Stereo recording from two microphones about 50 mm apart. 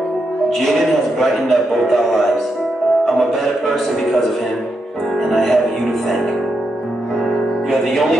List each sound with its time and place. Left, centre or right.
0.5 s speech: centre
5.3 s music: centre
7.7 s music: centre